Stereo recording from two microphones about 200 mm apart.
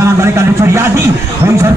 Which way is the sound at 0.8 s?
15° right (ahead or behind).